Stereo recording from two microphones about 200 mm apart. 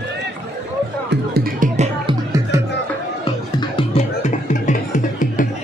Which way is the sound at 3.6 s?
25° left (ahead or behind).